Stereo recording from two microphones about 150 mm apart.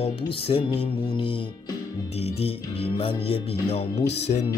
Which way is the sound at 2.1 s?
40° left (ahead or behind).